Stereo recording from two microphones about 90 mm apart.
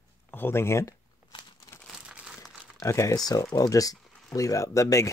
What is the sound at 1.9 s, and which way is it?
Crumpling, 10° right (ahead or behind).